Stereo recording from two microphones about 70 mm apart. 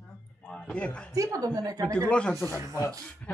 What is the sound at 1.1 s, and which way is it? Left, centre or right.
Speech, right.